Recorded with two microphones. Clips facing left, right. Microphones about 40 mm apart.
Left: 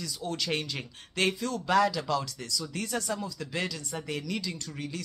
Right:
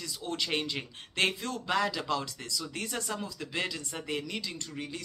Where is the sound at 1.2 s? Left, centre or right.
Right.